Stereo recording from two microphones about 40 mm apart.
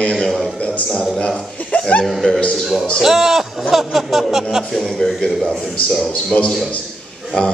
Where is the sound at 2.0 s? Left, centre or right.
Centre.